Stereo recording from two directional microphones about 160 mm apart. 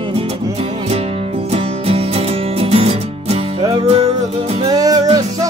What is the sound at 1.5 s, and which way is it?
Music, 40° right (ahead or behind).